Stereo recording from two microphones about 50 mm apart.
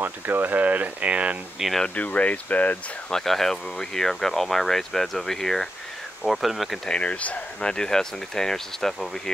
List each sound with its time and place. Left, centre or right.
0.0 s speech: right
1.6 s speech: centre
2.0 s speech: left
3.1 s speech: centre
6.2 s speech: centre
6.9 s speech: left
7.6 s speech: centre